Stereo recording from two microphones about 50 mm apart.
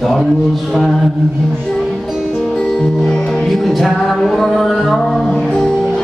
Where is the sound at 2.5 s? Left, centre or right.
Centre.